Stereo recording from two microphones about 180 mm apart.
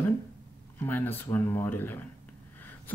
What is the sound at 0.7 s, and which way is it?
Speech, 10° left (ahead or behind).